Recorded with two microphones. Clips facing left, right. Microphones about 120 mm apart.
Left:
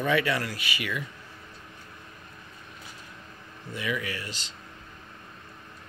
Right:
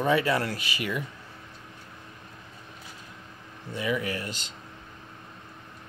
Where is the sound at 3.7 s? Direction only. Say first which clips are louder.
Right 3 dB; 35° right (ahead or behind).